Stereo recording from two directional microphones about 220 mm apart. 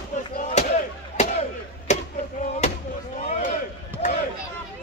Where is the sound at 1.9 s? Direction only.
30° left (ahead or behind).